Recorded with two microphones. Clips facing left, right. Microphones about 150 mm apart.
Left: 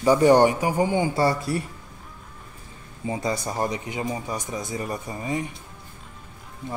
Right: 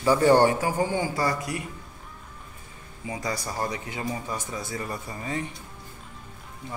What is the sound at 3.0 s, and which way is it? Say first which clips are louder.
Speech: left 5 dB; 25° left (ahead or behind).